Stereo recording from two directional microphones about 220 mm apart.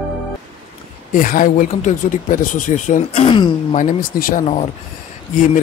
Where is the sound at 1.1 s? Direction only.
40° left (ahead or behind).